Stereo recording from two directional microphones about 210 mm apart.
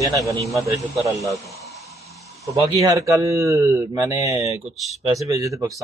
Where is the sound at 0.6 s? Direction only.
15° right (ahead or behind).